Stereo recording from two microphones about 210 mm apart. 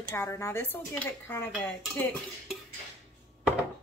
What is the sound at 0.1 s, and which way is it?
Speech, 15° left (ahead or behind).